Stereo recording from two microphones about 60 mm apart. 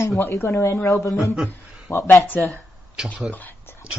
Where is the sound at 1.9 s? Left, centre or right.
Left.